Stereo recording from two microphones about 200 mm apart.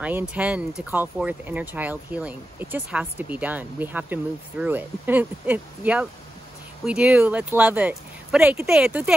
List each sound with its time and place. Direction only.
0.0 s speech: 5° right (ahead or behind)